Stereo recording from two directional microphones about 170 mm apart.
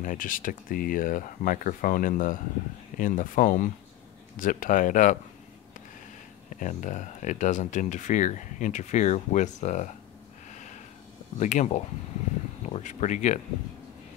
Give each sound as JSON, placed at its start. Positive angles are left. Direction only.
{"t": 0.0, "sound": "speech", "side_deg": 50}
{"t": 6.6, "sound": "speech", "side_deg": 45}
{"t": 10.5, "sound": "a sound", "side_deg": 45}
{"t": 11.3, "sound": "speech", "side_deg": 45}